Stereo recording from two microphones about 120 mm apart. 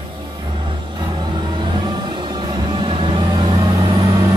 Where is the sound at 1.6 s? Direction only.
40° right (ahead or behind).